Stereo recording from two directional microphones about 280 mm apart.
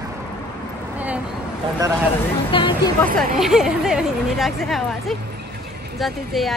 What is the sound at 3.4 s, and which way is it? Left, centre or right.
Speech, centre.